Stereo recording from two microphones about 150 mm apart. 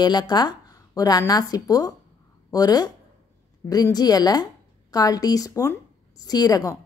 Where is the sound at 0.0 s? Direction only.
30° left (ahead or behind).